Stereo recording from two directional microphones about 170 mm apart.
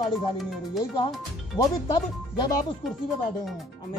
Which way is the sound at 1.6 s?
25° left (ahead or behind).